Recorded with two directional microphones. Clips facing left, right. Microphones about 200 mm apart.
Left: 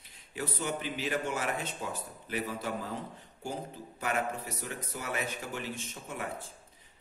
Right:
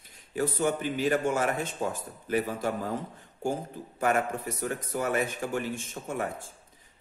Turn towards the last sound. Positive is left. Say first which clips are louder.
# right 7 dB
turn(degrees=-45)  # may be behind; listen again after turning